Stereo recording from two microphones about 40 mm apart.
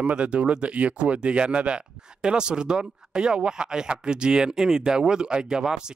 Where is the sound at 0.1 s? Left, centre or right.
Right.